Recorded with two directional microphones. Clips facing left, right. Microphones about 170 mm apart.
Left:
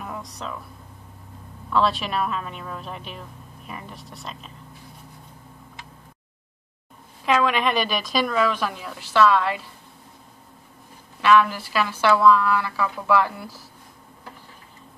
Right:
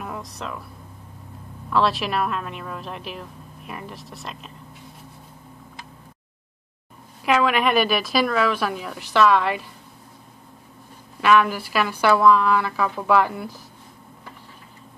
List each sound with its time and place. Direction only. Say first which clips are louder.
0.0 s a sound: right 1 dB; centre (ahead or behind)
1.7 s a woman's voice: right 1 dB; centre (ahead or behind)
7.2 s speech: right 1 dB; 10° right (ahead or behind)
11.2 s speech: even; 15° right (ahead or behind)